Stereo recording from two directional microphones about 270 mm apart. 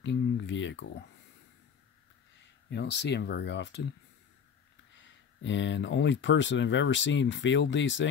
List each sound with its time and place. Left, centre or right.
0.0 s a sound: left
2.7 s speech: left
4.9 s speech: left